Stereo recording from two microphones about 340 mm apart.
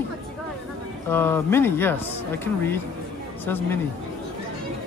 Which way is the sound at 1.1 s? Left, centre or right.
Centre.